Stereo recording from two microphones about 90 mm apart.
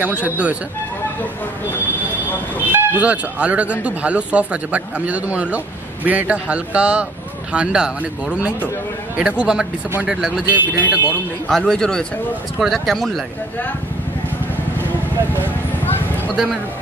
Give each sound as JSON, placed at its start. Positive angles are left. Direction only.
{"t": 0.0, "sound": "speech", "side_deg": -15}
{"t": 2.7, "sound": "speech", "side_deg": -15}
{"t": 11.4, "sound": "speech", "side_deg": 5}
{"t": 15.8, "sound": "a sound", "side_deg": 20}